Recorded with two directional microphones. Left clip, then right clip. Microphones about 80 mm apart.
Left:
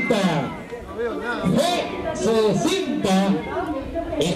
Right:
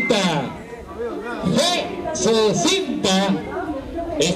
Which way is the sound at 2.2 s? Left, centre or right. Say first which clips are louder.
Right 2 dB; centre.